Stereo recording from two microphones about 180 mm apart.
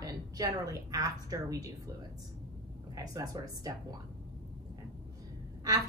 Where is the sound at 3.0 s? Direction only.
20° right (ahead or behind).